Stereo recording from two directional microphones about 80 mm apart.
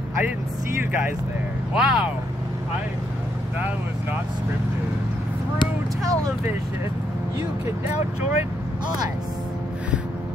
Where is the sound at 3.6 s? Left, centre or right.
Right.